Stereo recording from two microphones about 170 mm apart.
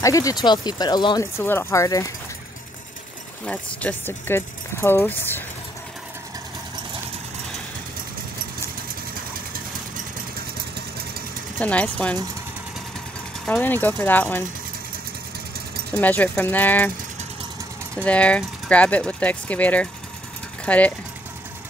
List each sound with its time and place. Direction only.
0.0 s speech: 20° left (ahead or behind)
3.4 s speech: 10° left (ahead or behind)
11.6 s speech: 10° left (ahead or behind)
13.5 s speech: 10° left (ahead or behind)
15.9 s speech: 10° left (ahead or behind)
18.0 s speech: 5° left (ahead or behind)